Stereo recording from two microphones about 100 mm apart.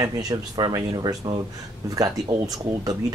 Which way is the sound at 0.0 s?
40° right (ahead or behind).